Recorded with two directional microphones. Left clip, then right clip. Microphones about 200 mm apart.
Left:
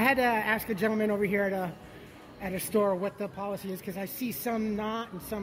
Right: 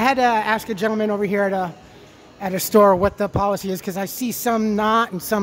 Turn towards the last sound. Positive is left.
turn(degrees=-35)  # may be behind; listen again after turning